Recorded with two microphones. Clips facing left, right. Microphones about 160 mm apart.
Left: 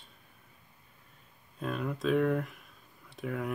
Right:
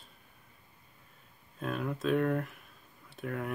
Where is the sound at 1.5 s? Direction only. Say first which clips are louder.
Even; centre (ahead or behind).